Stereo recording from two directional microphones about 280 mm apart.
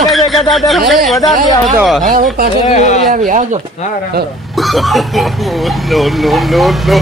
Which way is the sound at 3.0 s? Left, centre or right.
Right.